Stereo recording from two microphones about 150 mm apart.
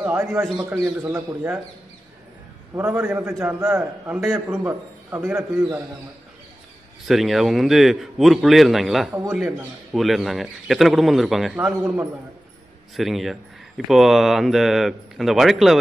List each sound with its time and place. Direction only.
0.0 s a man's voice: 15° right (ahead or behind)
2.7 s a man's voice: 15° right (ahead or behind)
7.1 s a man's voice: centre (ahead or behind)